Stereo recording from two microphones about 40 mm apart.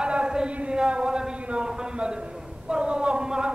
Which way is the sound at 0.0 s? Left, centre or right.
Right.